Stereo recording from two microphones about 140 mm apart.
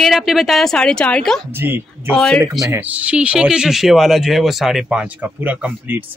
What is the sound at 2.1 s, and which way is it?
Speech, 5° left (ahead or behind).